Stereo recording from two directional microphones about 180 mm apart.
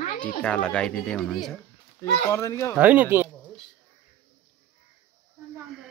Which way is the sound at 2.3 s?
15° left (ahead or behind).